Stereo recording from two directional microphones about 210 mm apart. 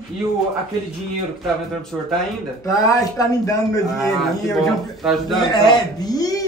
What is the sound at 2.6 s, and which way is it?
Speech, 15° left (ahead or behind).